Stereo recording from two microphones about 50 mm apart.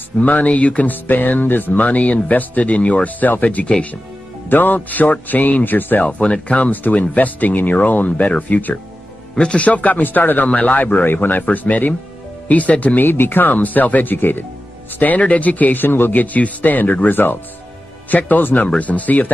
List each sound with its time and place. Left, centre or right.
0.2 s speech: left
1.0 s speech: left
4.5 s speech: left
6.0 s speech: left
9.3 s speech: centre; by 14.4 s left
15.0 s speech: left